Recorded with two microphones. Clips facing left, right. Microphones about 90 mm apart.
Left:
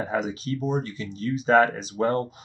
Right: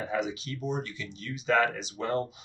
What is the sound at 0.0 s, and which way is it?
Speech, 40° left (ahead or behind).